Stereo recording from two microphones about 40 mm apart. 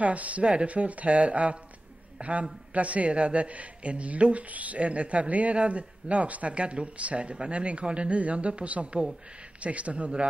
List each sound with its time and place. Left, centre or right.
0.0 s a man's voice: right